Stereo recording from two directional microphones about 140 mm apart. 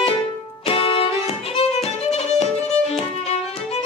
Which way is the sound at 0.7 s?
40° left (ahead or behind).